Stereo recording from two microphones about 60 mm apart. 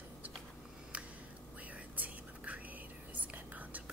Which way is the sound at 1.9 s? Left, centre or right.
Right.